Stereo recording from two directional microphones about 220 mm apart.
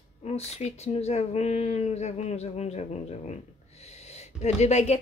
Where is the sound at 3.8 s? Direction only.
30° left (ahead or behind).